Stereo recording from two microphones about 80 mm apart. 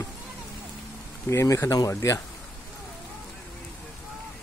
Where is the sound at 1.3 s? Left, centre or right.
Left.